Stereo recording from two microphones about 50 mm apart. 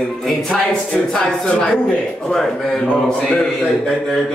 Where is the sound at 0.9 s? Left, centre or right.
Centre.